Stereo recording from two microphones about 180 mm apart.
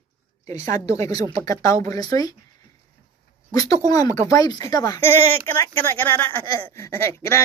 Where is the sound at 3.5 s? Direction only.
20° left (ahead or behind).